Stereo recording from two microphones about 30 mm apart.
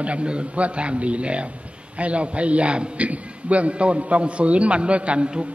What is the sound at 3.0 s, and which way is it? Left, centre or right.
A man's voice, right.